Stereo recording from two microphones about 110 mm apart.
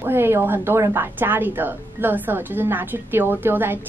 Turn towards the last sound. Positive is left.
turn(degrees=-20)  # may be behind; listen again after turning